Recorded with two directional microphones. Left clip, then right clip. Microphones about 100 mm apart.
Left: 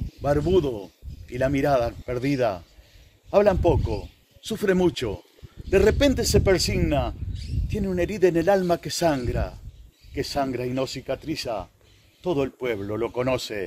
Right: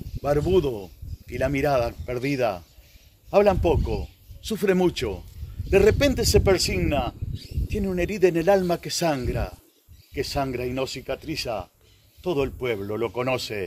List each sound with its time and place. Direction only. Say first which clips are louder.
0.2 s speech: even; 40° left (ahead or behind); by 13.7 s 60° left (ahead or behind)